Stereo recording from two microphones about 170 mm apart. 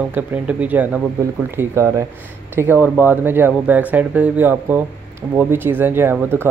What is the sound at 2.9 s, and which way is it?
Speech, 10° right (ahead or behind).